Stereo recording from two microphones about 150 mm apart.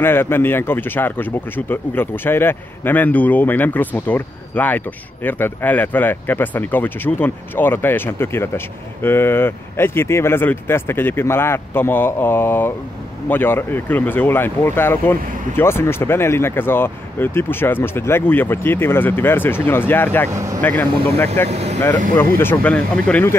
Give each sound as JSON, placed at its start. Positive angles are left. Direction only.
{"t": 0.0, "sound": "speech", "side_deg": 15}
{"t": 20.2, "sound": "speech", "side_deg": -20}
{"t": 21.5, "sound": "speech", "side_deg": -45}
{"t": 22.2, "sound": "speech", "side_deg": 15}